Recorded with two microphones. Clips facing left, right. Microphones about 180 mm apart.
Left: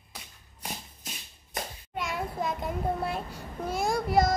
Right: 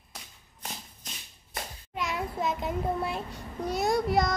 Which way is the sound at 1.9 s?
Centre (ahead or behind).